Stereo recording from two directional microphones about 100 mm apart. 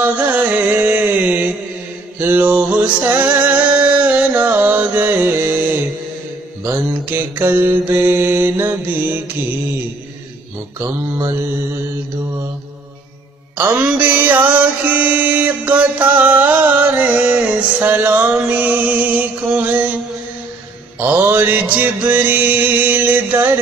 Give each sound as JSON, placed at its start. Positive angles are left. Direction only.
{"t": 0.0, "sound": "mantra", "side_deg": -15}
{"t": 2.1, "sound": "music", "side_deg": -20}
{"t": 6.6, "sound": "mantra", "side_deg": -20}
{"t": 10.8, "sound": "mantra", "side_deg": -30}
{"t": 13.8, "sound": "music", "side_deg": -15}
{"t": 21.0, "sound": "mantra", "side_deg": -20}